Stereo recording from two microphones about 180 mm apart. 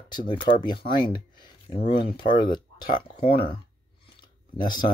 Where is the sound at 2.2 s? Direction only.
50° left (ahead or behind).